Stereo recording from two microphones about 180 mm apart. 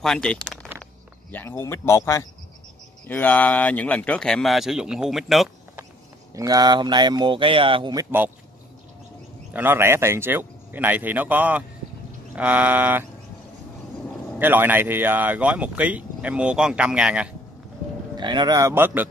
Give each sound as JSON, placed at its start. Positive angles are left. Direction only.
{"t": 0.0, "sound": "speech", "side_deg": 0}
{"t": 6.3, "sound": "speech", "side_deg": -20}
{"t": 9.5, "sound": "speech", "side_deg": -10}
{"t": 14.4, "sound": "speech", "side_deg": -10}
{"t": 18.1, "sound": "speech", "side_deg": -25}